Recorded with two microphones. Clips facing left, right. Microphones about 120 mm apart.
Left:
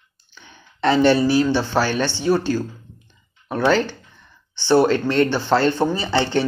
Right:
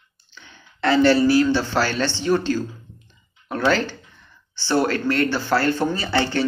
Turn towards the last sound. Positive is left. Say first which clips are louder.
# left 2 dB
turn(degrees=15)  # may be behind; listen again after turning